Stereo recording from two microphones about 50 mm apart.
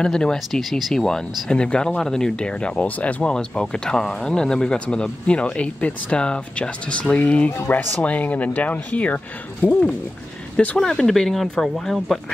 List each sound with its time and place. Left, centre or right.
0.0 s speech: centre
0.6 s speech: centre
0.9 s speech: centre; by 3.3 s left
3.3 s speech: centre
10.8 s speech: centre